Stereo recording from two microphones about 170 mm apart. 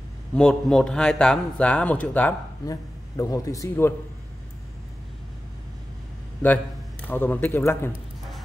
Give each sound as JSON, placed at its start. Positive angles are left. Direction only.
{"t": 0.3, "sound": "a man's voice", "side_deg": 5}
{"t": 2.6, "sound": "a man's voice", "side_deg": 20}
{"t": 7.1, "sound": "a man's voice", "side_deg": 10}